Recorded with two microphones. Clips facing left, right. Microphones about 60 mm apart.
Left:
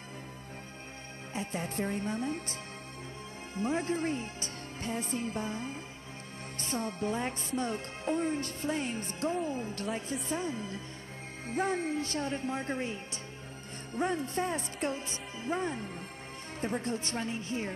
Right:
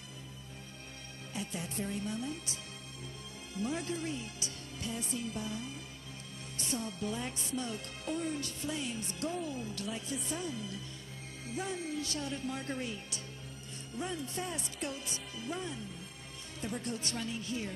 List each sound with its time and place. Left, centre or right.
1.3 s music: left
3.5 s music: left
16.6 s music: left